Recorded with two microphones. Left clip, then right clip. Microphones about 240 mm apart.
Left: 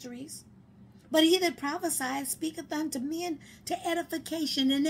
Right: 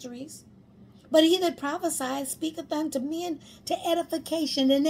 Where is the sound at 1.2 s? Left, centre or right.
Centre.